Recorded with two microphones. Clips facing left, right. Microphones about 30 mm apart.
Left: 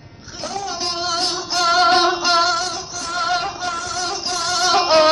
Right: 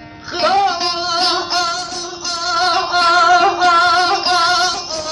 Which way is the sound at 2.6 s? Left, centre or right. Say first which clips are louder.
Right 13 dB; right.